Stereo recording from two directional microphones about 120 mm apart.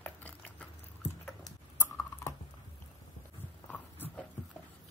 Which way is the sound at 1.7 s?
25° left (ahead or behind).